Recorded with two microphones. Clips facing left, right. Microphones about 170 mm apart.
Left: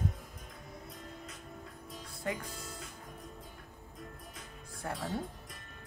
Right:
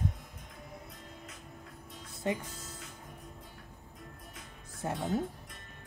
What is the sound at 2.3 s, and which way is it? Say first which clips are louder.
Speech: right 4 dB; 20° right (ahead or behind).